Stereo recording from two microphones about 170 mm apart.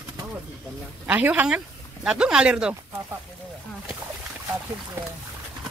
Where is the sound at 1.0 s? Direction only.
10° right (ahead or behind).